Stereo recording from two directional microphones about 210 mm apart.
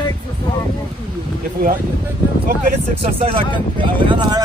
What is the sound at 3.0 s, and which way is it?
Speech, 25° right (ahead or behind).